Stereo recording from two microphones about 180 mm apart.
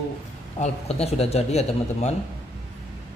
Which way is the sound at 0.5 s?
40° left (ahead or behind).